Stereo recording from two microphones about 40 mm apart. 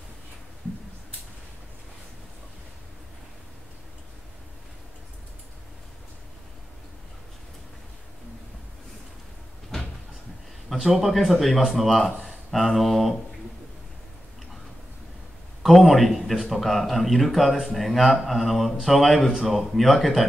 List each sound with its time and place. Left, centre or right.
10.7 s speech: centre
15.6 s a man's voice: centre